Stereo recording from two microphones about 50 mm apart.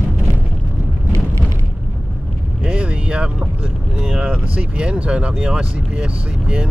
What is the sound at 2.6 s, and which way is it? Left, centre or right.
Speech, right.